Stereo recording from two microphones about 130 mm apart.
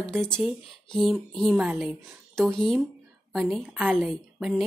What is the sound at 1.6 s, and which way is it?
Speech, 10° right (ahead or behind).